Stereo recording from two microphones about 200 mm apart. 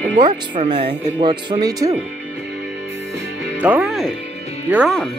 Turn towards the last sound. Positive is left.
turn(degrees=0)  # may be behind; listen again after turning